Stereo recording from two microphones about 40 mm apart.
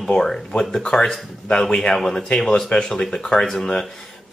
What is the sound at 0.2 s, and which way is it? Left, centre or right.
Speech, centre.